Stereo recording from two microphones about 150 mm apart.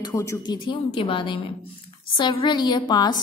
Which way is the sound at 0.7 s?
35° left (ahead or behind).